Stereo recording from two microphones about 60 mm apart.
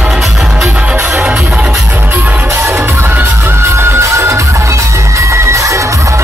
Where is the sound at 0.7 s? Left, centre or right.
Right.